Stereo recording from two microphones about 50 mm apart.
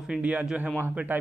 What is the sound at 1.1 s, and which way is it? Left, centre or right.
Speech, right.